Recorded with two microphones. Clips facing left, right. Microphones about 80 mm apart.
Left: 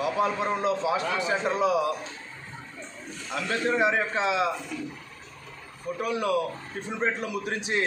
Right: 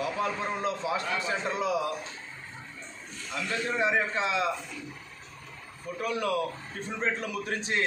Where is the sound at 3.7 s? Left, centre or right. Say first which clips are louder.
Left 3 dB; left.